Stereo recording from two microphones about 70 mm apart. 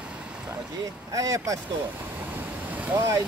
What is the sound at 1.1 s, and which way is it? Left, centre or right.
Speech, right.